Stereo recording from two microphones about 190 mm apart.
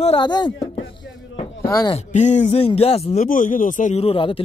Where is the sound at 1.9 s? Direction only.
40° left (ahead or behind).